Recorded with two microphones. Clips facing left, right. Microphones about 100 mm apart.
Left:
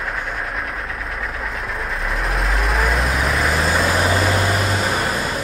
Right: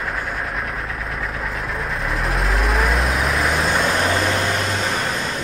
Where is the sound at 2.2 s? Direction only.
Centre (ahead or behind).